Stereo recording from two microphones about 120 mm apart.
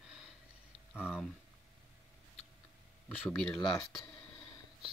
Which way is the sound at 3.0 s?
10° left (ahead or behind).